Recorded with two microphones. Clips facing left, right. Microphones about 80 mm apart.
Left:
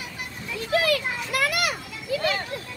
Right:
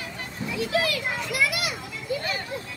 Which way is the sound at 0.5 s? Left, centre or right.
Left.